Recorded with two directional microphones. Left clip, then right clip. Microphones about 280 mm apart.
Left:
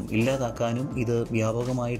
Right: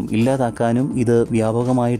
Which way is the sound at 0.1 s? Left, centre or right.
Centre.